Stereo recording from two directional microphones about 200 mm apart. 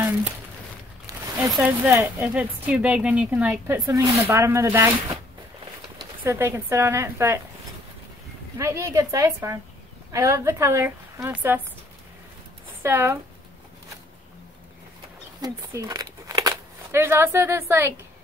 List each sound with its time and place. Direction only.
1.0 s a sound: 15° right (ahead or behind)
1.5 s speech: 10° right (ahead or behind)
6.2 s speech: 15° right (ahead or behind)
8.5 s speech: 15° right (ahead or behind)
12.8 s speech: 10° right (ahead or behind)
15.4 s speech: 15° right (ahead or behind)